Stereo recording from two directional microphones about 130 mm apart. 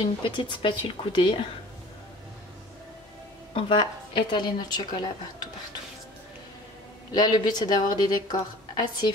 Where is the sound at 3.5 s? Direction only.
40° left (ahead or behind).